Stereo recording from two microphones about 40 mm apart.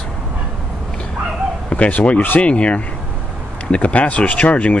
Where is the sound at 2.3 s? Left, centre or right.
Left.